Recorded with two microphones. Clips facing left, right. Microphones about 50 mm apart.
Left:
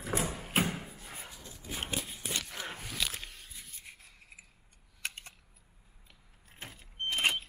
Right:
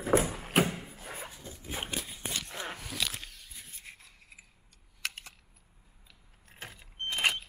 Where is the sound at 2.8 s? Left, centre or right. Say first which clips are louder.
Left 1 dB; centre.